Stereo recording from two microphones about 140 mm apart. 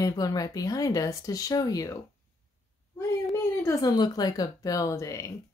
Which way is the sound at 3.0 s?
25° left (ahead or behind).